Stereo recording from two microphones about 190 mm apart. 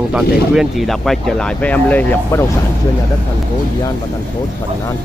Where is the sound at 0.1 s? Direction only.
Centre (ahead or behind).